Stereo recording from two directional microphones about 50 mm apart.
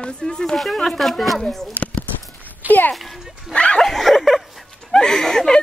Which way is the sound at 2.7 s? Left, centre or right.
Left.